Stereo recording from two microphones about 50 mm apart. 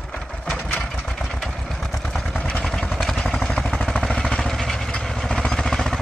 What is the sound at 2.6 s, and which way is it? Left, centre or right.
Vehicle, centre.